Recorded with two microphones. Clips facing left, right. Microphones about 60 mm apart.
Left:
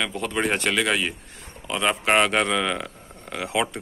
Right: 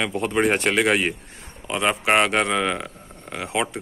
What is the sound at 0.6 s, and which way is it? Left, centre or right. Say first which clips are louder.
Speech: right 3 dB; right.